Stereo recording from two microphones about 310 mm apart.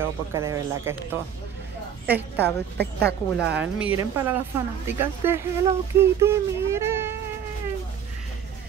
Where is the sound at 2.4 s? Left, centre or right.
Right.